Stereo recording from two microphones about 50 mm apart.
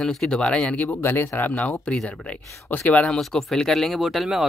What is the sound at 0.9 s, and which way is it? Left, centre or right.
Speech, left.